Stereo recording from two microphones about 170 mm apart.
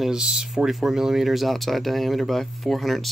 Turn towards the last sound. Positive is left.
turn(degrees=0)  # may be behind; listen again after turning